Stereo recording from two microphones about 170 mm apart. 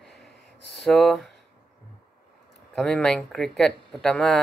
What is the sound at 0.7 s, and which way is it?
Speech, centre (ahead or behind).